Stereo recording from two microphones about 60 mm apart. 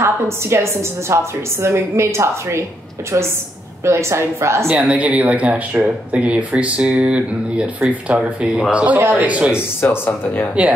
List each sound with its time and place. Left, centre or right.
0.0 s a woman's voice: right
3.8 s a woman's voice: right
4.6 s speech: right
9.1 s speech: right
10.0 s speech: left